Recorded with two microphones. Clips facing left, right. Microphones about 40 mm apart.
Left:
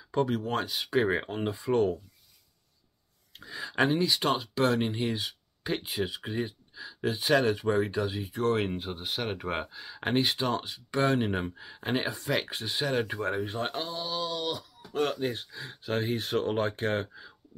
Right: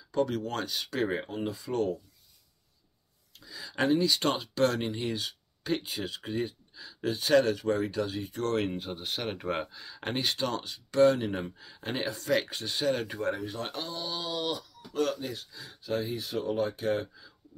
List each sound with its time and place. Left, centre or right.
0.3 s speech: centre
1.1 s speech: left
3.3 s speech: left
3.7 s speech: centre
14.0 s a sound: centre
14.9 s speech: left